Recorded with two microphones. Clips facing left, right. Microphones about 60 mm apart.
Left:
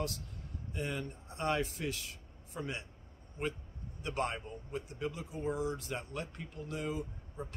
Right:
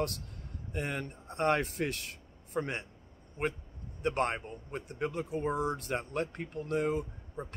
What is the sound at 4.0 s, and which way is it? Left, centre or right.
A man's voice, right.